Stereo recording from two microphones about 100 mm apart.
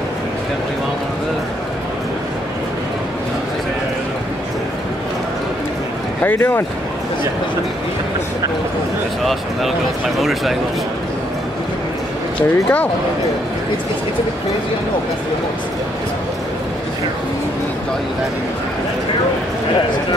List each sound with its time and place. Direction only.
6.2 s speech: 20° left (ahead or behind)
9.2 s a man's voice: centre (ahead or behind)
12.4 s speech: 15° left (ahead or behind)